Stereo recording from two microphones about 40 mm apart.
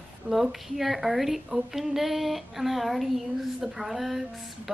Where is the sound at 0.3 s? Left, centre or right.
Centre.